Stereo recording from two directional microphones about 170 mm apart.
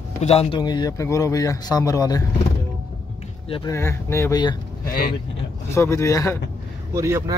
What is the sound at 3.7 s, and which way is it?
Speech, 15° left (ahead or behind).